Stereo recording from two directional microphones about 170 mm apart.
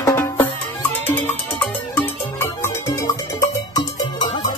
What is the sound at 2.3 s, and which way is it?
Music, 15° left (ahead or behind).